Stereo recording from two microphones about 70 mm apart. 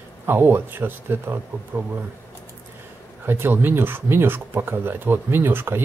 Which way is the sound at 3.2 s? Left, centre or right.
Right.